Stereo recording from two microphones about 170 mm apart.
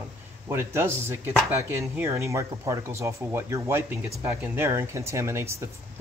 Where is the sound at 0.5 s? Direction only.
15° right (ahead or behind).